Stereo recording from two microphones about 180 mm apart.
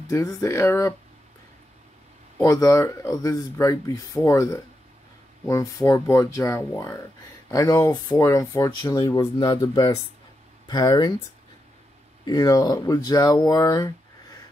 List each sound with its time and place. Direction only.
0.1 s speech: 15° left (ahead or behind)
2.3 s speech: 15° left (ahead or behind)
12.3 s speech: 20° left (ahead or behind)